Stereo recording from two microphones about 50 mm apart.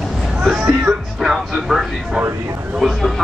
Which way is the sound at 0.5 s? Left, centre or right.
Right.